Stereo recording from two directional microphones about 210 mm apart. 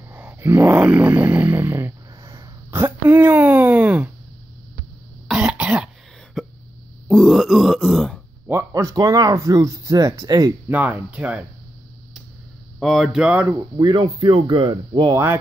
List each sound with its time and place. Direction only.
0.1 s a sound: 10° right (ahead or behind)
5.3 s cough: 5° right (ahead or behind)
6.4 s hiccup: centre (ahead or behind)
7.1 s grunt: centre (ahead or behind)
8.5 s speech: 15° right (ahead or behind)
12.7 s speech: centre (ahead or behind); by 15.3 s 15° right (ahead or behind)